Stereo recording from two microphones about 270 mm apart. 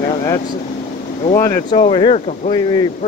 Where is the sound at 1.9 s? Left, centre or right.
Centre.